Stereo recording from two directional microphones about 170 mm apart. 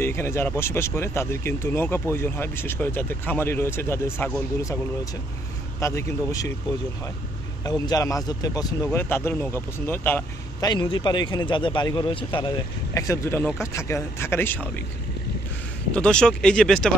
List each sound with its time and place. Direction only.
0.0 s speech: 15° left (ahead or behind)
5.8 s speech: 15° left (ahead or behind)
7.6 s speech: 20° left (ahead or behind)
10.6 s speech: 25° left (ahead or behind)
15.9 s speech: 5° left (ahead or behind)